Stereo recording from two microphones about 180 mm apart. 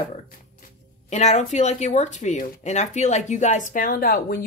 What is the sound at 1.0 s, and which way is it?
Speech, 40° left (ahead or behind).